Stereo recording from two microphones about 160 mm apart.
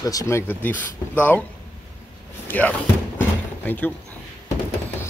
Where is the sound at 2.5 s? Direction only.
10° left (ahead or behind).